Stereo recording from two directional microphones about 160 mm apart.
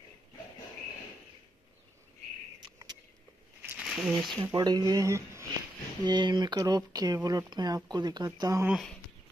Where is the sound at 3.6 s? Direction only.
10° right (ahead or behind).